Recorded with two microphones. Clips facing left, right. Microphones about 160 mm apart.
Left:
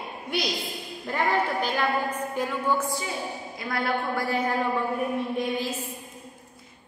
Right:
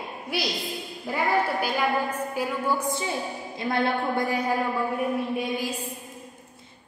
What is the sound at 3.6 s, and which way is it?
Speech, 25° right (ahead or behind).